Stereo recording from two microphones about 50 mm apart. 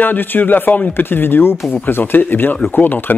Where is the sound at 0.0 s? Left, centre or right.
Left.